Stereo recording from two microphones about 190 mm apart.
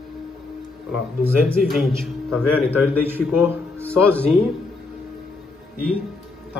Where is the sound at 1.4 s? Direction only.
Centre (ahead or behind).